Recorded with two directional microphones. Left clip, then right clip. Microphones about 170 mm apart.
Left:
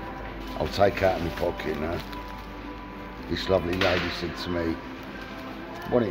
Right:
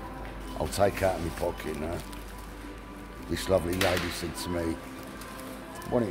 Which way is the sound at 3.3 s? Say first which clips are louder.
Left 2 dB; 25° right (ahead or behind).